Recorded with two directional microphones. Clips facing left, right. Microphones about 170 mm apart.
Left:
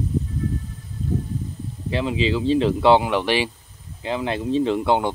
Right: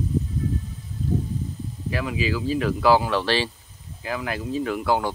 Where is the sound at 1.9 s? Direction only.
25° left (ahead or behind).